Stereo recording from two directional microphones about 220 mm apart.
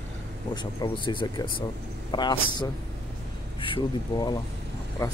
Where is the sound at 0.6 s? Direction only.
20° left (ahead or behind).